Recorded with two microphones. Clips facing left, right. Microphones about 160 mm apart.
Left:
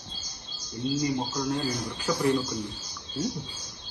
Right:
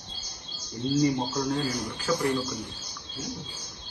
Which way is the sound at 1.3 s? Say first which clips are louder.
Right 1 dB; centre (ahead or behind).